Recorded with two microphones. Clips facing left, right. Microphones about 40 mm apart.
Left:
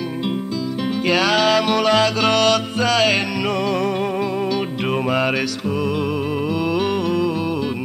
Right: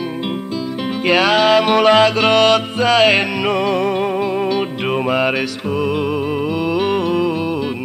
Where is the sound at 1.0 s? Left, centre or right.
Right.